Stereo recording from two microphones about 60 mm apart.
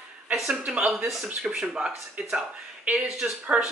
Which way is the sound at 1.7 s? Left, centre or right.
Right.